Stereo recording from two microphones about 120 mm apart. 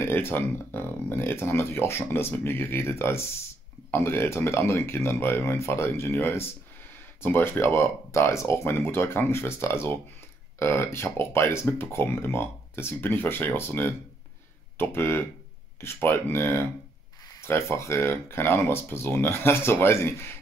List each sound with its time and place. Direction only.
0.0 s speech: 20° left (ahead or behind)